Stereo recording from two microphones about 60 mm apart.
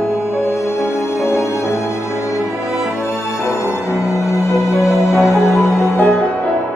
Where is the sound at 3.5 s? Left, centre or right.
Left.